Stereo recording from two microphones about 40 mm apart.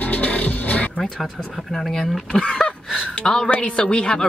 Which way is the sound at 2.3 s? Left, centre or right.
Left.